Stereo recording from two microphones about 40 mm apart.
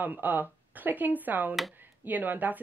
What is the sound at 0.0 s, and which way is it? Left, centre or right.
A woman's voice, right.